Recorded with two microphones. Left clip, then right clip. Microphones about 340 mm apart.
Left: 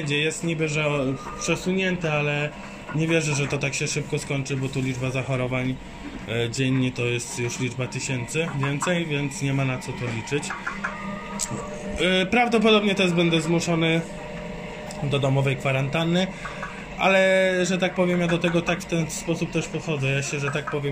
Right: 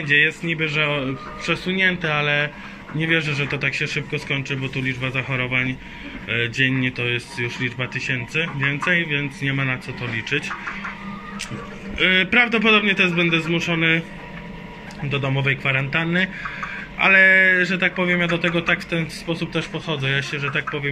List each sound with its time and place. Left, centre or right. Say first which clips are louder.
0.0 s speech: right 7 dB; centre
12.0 s speech: right 5 dB; centre
15.0 s speech: right 2 dB; centre